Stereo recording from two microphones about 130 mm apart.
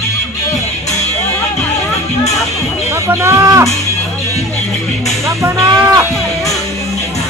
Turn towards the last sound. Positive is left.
turn(degrees=-25)  # may be behind; listen again after turning